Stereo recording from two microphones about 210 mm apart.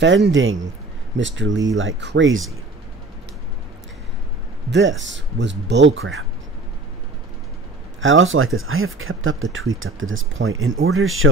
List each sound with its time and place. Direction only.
0.0 s speech: 60° right (ahead or behind)
4.6 s speech: 60° right (ahead or behind)
8.0 s speech: 65° right (ahead or behind)